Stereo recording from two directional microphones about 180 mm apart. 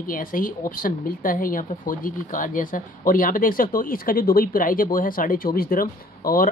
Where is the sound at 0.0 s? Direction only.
50° left (ahead or behind).